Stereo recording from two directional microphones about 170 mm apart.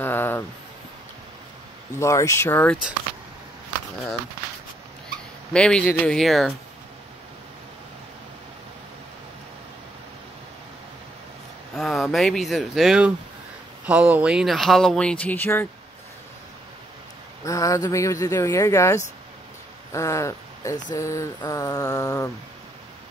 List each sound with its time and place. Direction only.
0.0 s a sound: 10° left (ahead or behind)
2.0 s speech: 15° left (ahead or behind)
5.5 s speech: 5° left (ahead or behind)
11.7 s speech: centre (ahead or behind)
17.5 s speech: 20° left (ahead or behind)